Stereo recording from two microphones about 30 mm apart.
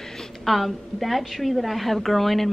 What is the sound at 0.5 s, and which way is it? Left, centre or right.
A woman's voice, centre.